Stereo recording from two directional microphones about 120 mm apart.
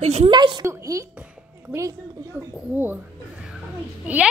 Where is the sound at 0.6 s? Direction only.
25° right (ahead or behind).